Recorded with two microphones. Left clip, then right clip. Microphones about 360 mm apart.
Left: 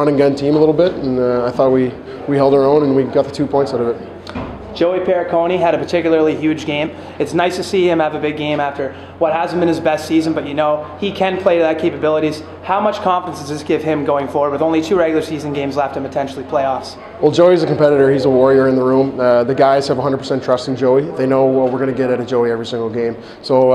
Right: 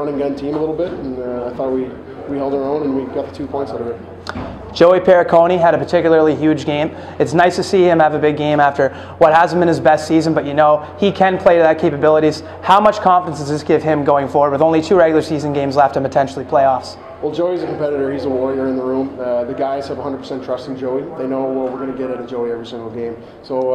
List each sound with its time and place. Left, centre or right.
0.0 s a man's voice: left
4.7 s speech: right
17.2 s a man's voice: left